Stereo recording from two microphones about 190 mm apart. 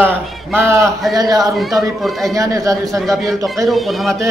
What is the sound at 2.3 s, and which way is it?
Speech, 15° right (ahead or behind).